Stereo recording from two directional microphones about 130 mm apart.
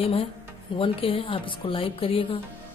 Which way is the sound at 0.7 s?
45° left (ahead or behind).